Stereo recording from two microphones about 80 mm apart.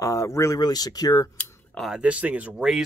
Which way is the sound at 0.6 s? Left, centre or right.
Left.